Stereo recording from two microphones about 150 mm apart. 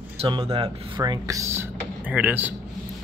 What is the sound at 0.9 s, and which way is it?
Speech, 25° right (ahead or behind).